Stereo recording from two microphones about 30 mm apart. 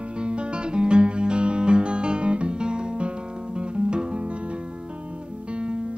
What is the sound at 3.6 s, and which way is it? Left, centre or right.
Music, right.